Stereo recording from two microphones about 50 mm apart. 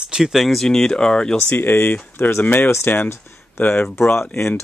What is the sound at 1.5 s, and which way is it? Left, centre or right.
Speech, left.